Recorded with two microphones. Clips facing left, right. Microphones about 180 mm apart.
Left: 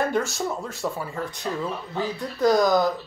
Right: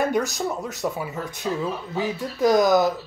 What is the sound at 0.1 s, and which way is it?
A woman's voice, 15° right (ahead or behind).